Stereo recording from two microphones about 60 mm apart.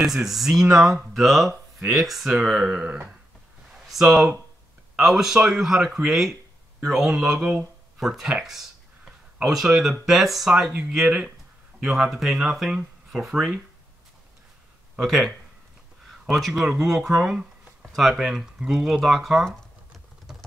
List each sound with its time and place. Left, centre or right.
0.0 s speech: centre; by 3.2 s right
3.7 s speech: centre
9.4 s speech: centre
11.8 s speech: centre
15.0 s speech: centre
20.3 s typing: centre